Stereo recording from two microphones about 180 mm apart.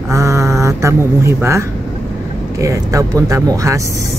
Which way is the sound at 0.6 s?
15° right (ahead or behind).